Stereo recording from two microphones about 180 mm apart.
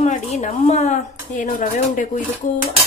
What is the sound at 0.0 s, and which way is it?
Speech, 35° left (ahead or behind).